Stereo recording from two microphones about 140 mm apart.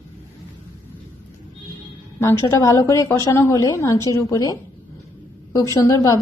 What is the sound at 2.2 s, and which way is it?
A woman's voice, 20° left (ahead or behind).